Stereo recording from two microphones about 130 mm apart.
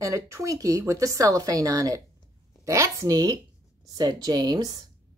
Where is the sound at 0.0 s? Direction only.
25° right (ahead or behind).